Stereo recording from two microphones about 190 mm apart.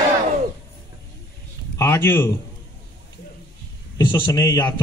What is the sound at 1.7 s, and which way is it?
Speech, 15° left (ahead or behind).